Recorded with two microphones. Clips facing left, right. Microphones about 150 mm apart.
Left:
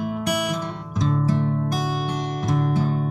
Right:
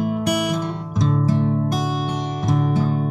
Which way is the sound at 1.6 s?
20° right (ahead or behind).